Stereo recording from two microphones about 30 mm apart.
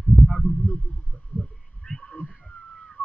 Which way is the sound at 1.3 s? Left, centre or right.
Left.